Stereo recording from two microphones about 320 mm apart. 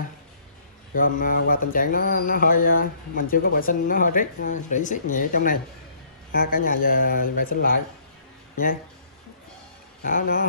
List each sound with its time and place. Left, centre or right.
0.9 s mantra: left
10.0 s mantra: left